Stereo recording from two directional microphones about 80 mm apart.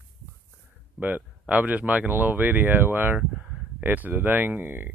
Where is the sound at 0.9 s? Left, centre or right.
Right.